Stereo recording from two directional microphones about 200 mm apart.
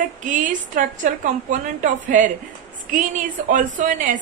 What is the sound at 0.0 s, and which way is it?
A woman's voice, 40° right (ahead or behind).